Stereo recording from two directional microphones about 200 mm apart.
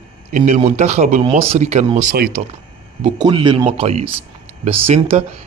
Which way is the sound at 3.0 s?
25° right (ahead or behind).